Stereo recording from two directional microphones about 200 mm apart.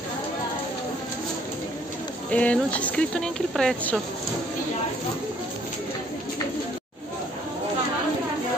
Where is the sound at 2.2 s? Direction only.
5° left (ahead or behind).